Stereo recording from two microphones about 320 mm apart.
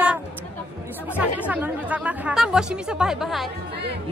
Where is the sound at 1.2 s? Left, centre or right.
Centre.